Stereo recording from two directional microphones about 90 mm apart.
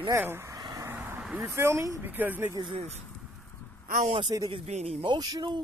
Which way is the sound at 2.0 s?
20° right (ahead or behind).